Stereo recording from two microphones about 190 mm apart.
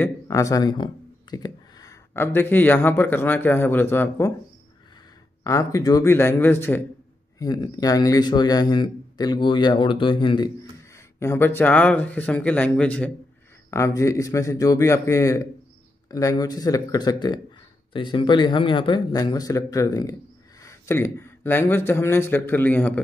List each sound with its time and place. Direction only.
0.0 s speech: 15° left (ahead or behind)
5.4 s speech: 15° left (ahead or behind)
11.1 s speech: 15° left (ahead or behind)